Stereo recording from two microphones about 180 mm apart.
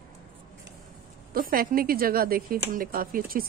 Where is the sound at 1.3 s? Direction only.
50° right (ahead or behind).